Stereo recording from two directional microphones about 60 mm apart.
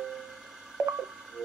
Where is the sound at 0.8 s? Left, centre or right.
Right.